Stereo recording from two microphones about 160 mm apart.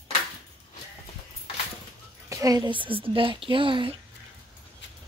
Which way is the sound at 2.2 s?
20° right (ahead or behind).